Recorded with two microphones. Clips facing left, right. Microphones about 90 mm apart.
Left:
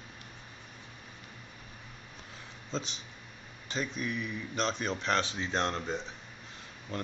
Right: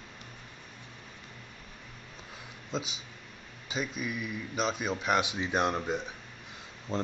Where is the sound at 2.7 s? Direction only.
10° right (ahead or behind).